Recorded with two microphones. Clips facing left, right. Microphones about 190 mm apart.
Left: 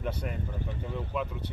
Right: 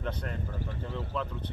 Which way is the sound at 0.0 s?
10° left (ahead or behind).